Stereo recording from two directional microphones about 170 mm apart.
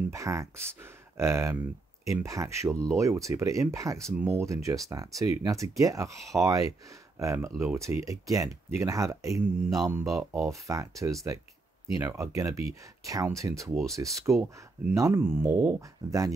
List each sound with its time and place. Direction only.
0.1 s speech: 20° right (ahead or behind)